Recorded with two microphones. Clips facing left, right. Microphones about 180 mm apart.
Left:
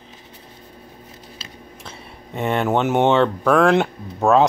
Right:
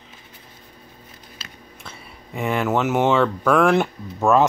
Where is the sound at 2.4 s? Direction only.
30° left (ahead or behind).